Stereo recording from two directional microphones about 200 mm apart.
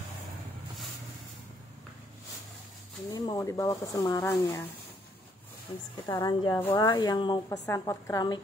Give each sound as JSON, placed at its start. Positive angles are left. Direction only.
{"t": 3.1, "sound": "speech", "side_deg": 20}
{"t": 6.0, "sound": "a woman's voice", "side_deg": 20}